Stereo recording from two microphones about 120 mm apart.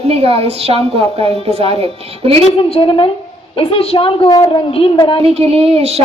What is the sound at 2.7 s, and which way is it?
A woman's voice, 45° left (ahead or behind).